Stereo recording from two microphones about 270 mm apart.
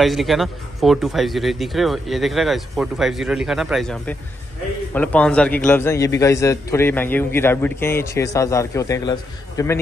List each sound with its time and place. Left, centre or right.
0.0 s a man's voice: centre